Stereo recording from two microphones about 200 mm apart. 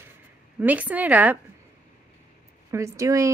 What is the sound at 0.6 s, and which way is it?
Speech, 5° right (ahead or behind).